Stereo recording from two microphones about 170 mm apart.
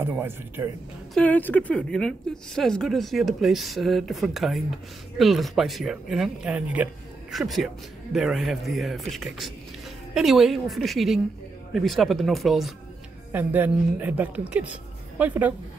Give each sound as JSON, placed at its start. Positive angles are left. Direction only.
{"t": 0.0, "sound": "a woman's voice", "side_deg": -15}
{"t": 1.1, "sound": "speech", "side_deg": 10}
{"t": 13.3, "sound": "a woman's voice", "side_deg": -10}